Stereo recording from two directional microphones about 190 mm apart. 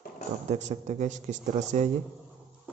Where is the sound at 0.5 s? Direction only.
40° right (ahead or behind).